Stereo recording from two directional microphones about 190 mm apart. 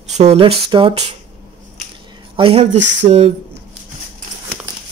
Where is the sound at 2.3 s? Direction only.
30° right (ahead or behind).